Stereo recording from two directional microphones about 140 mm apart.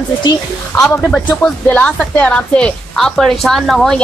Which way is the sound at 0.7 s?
25° left (ahead or behind).